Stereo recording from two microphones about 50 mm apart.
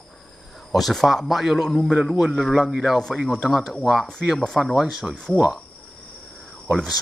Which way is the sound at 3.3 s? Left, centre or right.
Centre.